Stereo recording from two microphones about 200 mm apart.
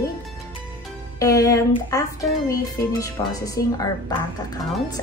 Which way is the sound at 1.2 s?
15° left (ahead or behind).